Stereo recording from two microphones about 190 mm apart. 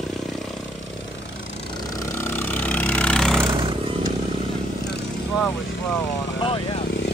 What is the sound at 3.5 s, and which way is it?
Vehicle, 25° right (ahead or behind).